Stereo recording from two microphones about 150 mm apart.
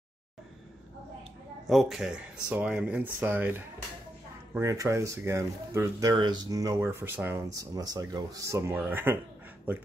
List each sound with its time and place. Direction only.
1.7 s speech: centre (ahead or behind)